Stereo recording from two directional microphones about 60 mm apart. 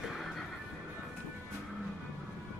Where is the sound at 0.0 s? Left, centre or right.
Centre.